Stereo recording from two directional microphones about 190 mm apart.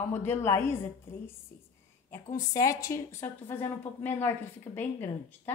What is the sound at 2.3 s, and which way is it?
A woman's voice, 15° left (ahead or behind).